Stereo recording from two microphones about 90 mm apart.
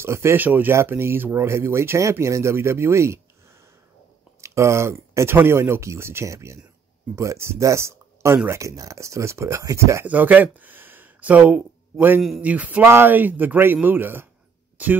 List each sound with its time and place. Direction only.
0.0 s a man's voice: 30° right (ahead or behind)
10.0 s a man's voice: 15° right (ahead or behind)